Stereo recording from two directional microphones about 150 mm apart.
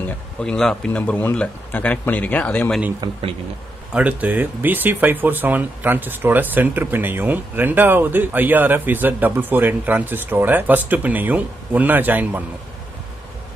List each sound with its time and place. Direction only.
0.4 s speech: 5° left (ahead or behind)
3.0 s a man's voice: 25° right (ahead or behind)
3.9 s speech: 10° right (ahead or behind)